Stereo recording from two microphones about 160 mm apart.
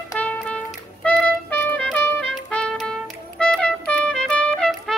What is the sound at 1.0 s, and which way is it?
Music, 10° left (ahead or behind).